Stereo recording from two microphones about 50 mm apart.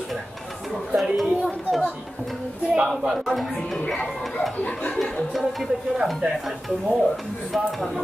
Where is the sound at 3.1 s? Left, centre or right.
Centre.